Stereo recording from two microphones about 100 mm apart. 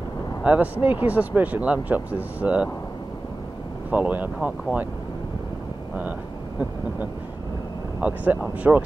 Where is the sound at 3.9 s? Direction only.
15° right (ahead or behind).